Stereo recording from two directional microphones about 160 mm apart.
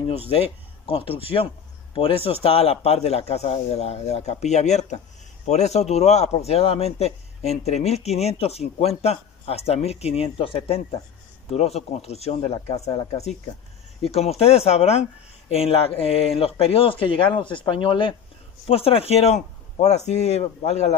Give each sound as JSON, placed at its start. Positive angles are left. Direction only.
{"t": 0.3, "sound": "speech", "side_deg": 40}